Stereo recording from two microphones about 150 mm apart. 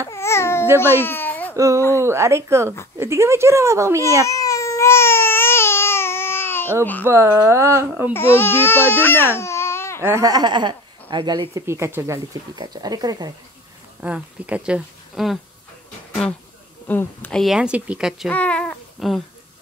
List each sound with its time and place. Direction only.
0.1 s babbling: 15° left (ahead or behind)
0.7 s speech: 15° left (ahead or behind)
2.0 s speech: 20° right (ahead or behind)
4.3 s baby cry: 20° left (ahead or behind)
7.1 s speech: 20° right (ahead or behind)
8.1 s speech: 15° left (ahead or behind)
10.0 s speech: 20° right (ahead or behind)
14.0 s speech: 10° right (ahead or behind)
16.8 s speech: 10° left (ahead or behind)
17.4 s speech: 5° right (ahead or behind)
18.3 s speech: 10° left (ahead or behind)